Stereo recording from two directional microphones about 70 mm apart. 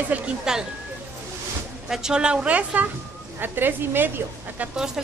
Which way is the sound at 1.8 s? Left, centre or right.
Centre.